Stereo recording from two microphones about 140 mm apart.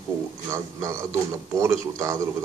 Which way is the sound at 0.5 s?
20° right (ahead or behind).